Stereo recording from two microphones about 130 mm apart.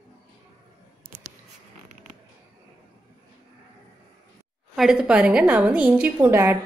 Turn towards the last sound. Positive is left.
turn(degrees=-20)  # may be behind; listen again after turning